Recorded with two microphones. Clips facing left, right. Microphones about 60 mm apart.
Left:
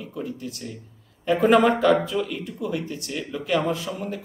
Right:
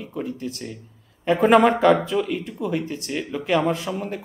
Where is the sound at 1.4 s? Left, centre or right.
Right.